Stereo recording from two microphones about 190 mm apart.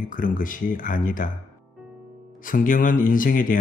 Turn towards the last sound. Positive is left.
turn(degrees=45)  # may be behind; listen again after turning